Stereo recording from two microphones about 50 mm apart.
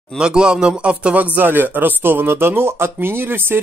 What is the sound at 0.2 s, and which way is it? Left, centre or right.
A man's voice, centre.